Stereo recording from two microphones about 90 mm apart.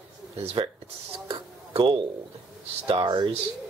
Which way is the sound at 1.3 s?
90° right.